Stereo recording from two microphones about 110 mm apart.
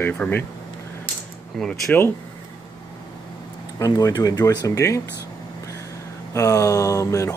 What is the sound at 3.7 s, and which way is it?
Speech, 30° left (ahead or behind).